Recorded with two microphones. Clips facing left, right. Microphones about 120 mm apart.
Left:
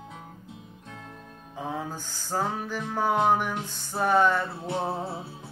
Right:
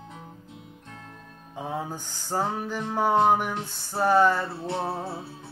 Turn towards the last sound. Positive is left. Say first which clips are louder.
# even
turn(degrees=15)  # may be behind; listen again after turning